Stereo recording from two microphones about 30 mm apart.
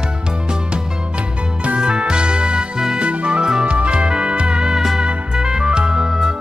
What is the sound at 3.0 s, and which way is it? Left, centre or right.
Music, right.